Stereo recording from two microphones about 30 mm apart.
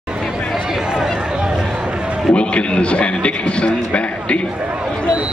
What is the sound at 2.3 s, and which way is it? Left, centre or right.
A man's voice, left.